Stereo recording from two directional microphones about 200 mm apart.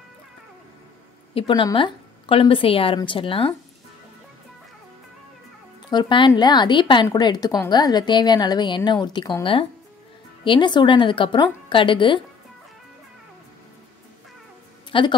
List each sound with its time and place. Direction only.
1.3 s a woman's voice: 25° left (ahead or behind)
5.9 s a woman's voice: 20° left (ahead or behind)
14.9 s a woman's voice: 25° left (ahead or behind)